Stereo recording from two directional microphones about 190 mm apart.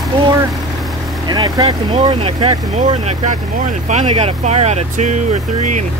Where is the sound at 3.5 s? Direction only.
45° right (ahead or behind).